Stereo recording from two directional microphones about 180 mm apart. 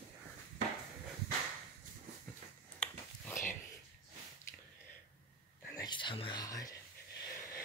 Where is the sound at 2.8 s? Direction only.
5° left (ahead or behind).